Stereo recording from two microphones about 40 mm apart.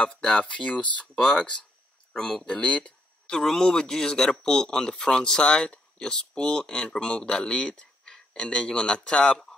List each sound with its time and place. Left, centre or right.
0.0 s speech: left
1.0 s speech: centre
2.4 s speech: left
3.3 s speech: centre